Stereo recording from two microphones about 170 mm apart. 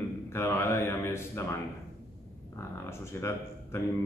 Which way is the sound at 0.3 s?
15° left (ahead or behind).